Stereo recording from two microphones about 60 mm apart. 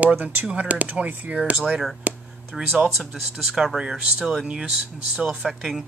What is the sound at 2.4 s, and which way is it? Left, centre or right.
Speech, centre.